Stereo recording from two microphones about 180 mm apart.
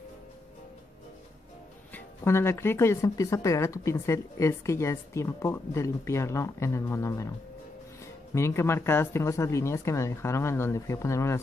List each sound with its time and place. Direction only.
2.0 s speech: 15° left (ahead or behind)
8.4 s speech: 15° left (ahead or behind)